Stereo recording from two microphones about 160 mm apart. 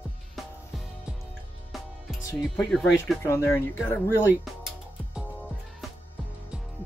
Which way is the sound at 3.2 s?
15° left (ahead or behind).